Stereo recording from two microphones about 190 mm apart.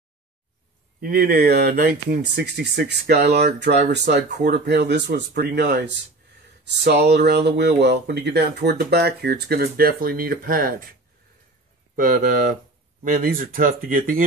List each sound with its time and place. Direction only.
1.0 s speech: 50° right (ahead or behind)